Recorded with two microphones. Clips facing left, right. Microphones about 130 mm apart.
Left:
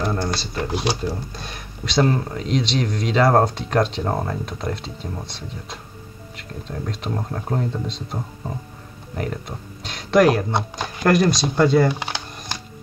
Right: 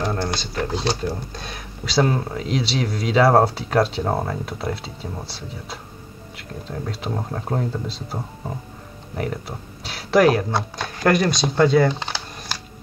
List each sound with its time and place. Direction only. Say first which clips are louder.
0.6 s speech: right 1 dB; 15° left (ahead or behind)
1.1 s speech: even; centre (ahead or behind)
10.5 s speech: left 1 dB; 20° left (ahead or behind)
11.1 s speech: left 1 dB; centre (ahead or behind)
11.9 s computer keyboard: left 1 dB; 15° left (ahead or behind)